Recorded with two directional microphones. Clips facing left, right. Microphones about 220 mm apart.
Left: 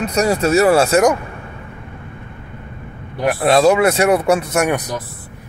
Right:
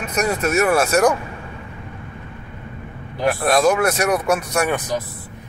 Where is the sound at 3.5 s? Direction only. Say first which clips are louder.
Left 5 dB; 30° left (ahead or behind).